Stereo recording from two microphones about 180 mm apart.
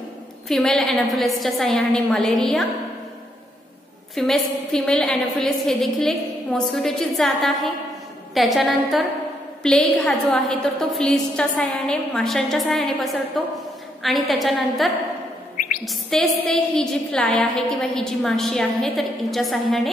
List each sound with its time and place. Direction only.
0.5 s a woman's voice: centre (ahead or behind)
4.1 s a woman's voice: centre (ahead or behind)